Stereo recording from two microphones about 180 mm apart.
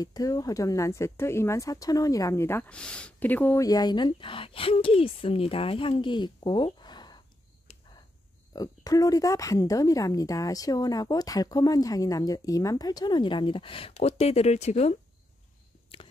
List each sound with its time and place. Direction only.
0.0 s speech: 20° left (ahead or behind)
8.5 s speech: 20° left (ahead or behind); by 15.0 s 35° left (ahead or behind)